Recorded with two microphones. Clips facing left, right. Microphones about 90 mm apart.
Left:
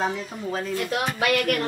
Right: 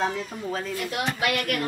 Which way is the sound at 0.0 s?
Centre (ahead or behind).